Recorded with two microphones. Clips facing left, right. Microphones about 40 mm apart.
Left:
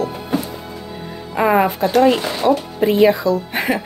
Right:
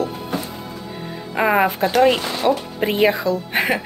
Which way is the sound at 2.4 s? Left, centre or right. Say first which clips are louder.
Left 4 dB; right.